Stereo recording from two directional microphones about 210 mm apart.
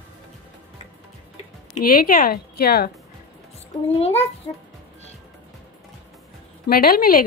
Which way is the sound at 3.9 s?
30° left (ahead or behind).